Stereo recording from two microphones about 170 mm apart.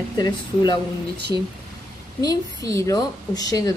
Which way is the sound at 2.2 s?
20° left (ahead or behind).